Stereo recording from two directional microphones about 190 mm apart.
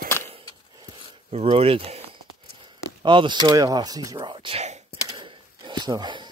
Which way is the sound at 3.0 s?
25° right (ahead or behind).